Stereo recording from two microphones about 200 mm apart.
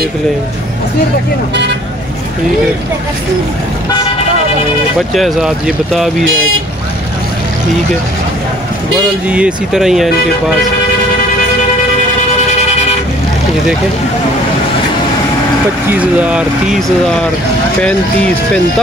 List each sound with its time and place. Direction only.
1.5 s speech: 60° right (ahead or behind)
5.1 s speech: centre (ahead or behind)
9.3 s speech: 5° right (ahead or behind)
12.4 s vehicle: 35° left (ahead or behind)
15.9 s speech: 5° right (ahead or behind)